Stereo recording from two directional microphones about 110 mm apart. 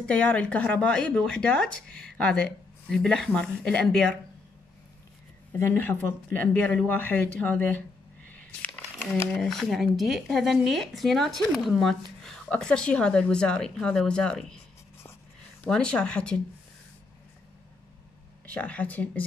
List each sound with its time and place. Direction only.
0.0 s speech: 10° left (ahead or behind)
5.5 s speech: 20° left (ahead or behind)
8.3 s a sound: 15° left (ahead or behind)
9.3 s speech: centre (ahead or behind)
15.6 s speech: 10° left (ahead or behind)
18.4 s speech: 15° left (ahead or behind)